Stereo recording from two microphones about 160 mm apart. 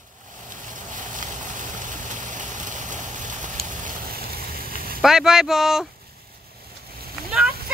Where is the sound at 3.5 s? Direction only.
50° right (ahead or behind).